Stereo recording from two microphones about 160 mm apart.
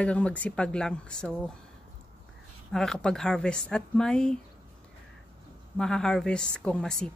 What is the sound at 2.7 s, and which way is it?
Speech, 5° left (ahead or behind).